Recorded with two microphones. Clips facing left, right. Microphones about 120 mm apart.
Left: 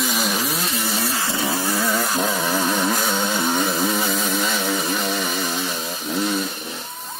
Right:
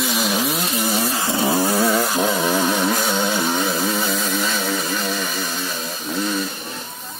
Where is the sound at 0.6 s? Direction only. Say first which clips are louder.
Right 3 dB; 30° right (ahead or behind).